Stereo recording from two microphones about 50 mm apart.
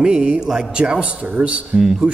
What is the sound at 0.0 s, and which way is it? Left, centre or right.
A man's voice, right.